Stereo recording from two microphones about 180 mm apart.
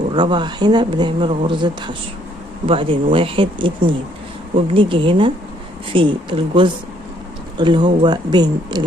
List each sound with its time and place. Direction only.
0.1 s speech: 25° right (ahead or behind)